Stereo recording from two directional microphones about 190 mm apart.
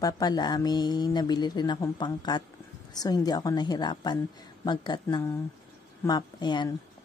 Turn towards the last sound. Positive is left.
turn(degrees=25)  # may be behind; listen again after turning